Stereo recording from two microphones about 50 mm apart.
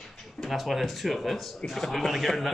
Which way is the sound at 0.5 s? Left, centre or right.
Centre.